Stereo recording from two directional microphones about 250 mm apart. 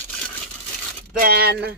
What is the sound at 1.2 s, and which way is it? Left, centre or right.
Speech, right.